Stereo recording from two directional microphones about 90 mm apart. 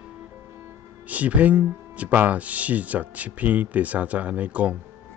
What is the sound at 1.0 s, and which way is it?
Speech, 15° right (ahead or behind).